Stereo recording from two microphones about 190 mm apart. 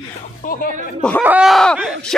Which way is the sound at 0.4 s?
50° left (ahead or behind).